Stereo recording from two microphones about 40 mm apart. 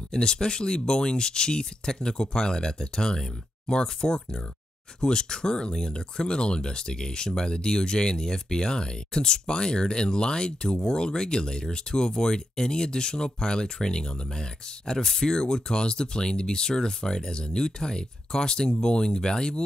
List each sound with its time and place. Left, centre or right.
0.1 s speech: centre